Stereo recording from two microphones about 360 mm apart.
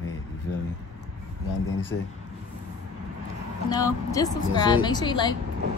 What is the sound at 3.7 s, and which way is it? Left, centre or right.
Speech, centre.